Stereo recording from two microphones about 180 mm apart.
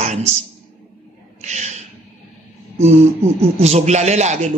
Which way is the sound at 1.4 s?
40° right (ahead or behind).